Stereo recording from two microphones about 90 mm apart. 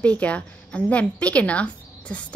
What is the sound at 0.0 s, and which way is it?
Speech, 15° left (ahead or behind).